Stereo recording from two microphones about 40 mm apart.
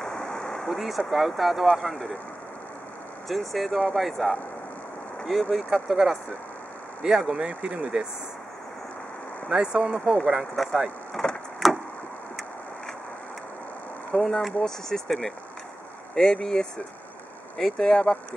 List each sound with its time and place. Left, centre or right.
0.0 s a sound: centre
0.7 s speech: centre
3.3 s speech: centre
7.0 s speech: centre
9.5 s speech: centre
9.9 s speech: centre
11.2 s a sound: centre
11.6 s vehicle: centre
14.1 s speech: centre
16.2 s speech: centre